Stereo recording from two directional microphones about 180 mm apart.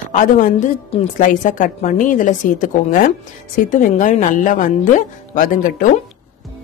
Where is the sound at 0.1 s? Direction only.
45° left (ahead or behind).